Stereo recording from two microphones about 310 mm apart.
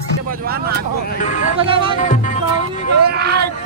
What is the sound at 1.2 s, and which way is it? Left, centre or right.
Music, left.